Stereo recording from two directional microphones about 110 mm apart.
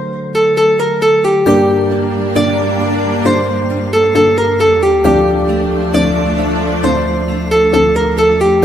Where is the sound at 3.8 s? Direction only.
Centre (ahead or behind).